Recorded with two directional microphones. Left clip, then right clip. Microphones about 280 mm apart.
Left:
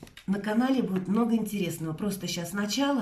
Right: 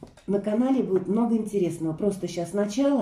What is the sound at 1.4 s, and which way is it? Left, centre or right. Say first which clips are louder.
Speech: right 7 dB; left.